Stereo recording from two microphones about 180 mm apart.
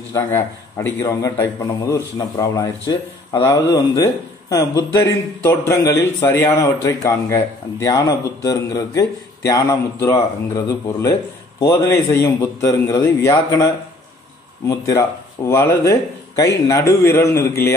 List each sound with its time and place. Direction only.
0.1 s a man's voice: 15° left (ahead or behind)
14.7 s a man's voice: 15° left (ahead or behind)